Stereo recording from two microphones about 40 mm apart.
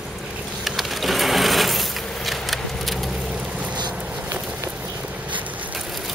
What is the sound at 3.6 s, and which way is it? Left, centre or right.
Boat, right.